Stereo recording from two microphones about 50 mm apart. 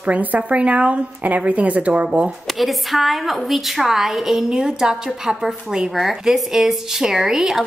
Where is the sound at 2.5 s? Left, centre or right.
Centre.